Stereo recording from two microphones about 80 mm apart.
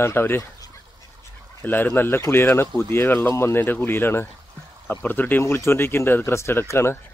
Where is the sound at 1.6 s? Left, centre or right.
Left.